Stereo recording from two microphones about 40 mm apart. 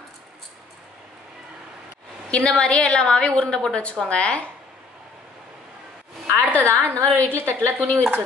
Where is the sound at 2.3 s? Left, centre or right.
Left.